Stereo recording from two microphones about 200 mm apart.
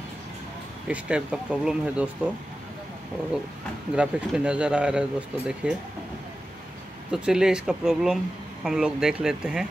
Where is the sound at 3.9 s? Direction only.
5° right (ahead or behind).